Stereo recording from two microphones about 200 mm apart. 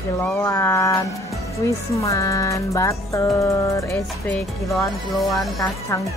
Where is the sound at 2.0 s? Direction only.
15° left (ahead or behind).